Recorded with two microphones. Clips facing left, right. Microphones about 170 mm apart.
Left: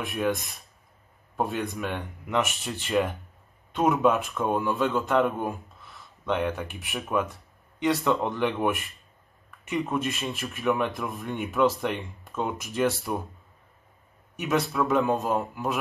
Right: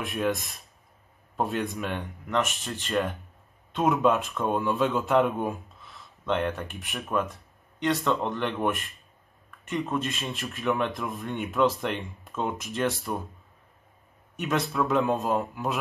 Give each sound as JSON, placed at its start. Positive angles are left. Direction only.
{"t": 0.0, "sound": "speech", "side_deg": 0}
{"t": 14.3, "sound": "speech", "side_deg": 0}